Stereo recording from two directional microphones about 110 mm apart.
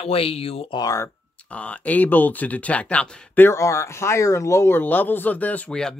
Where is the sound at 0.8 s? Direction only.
30° left (ahead or behind).